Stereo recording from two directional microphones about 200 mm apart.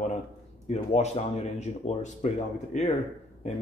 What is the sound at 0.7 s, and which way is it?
Speech, 35° left (ahead or behind).